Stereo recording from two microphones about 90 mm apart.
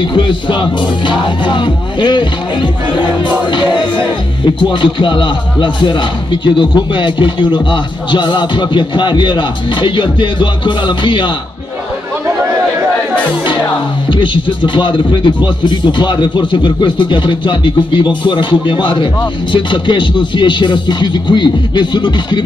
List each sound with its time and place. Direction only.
0.0 s a man's voice: 60° left (ahead or behind)
4.6 s a man's voice: 65° left (ahead or behind)
14.0 s a man's voice: 65° left (ahead or behind)